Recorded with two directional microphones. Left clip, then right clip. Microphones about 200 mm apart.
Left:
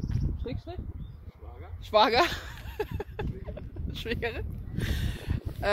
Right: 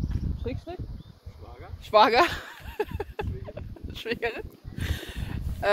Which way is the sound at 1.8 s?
5° right (ahead or behind).